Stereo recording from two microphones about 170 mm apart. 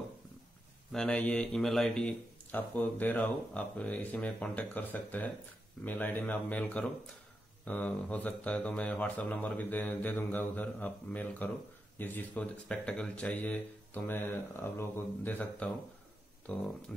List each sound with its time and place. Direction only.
0.9 s speech: 5° left (ahead or behind)